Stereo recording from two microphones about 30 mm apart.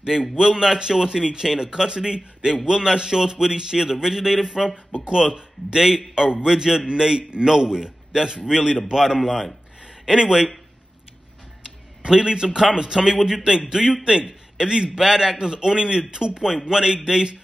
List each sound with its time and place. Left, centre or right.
0.0 s a man's voice: centre
12.1 s a man's voice: right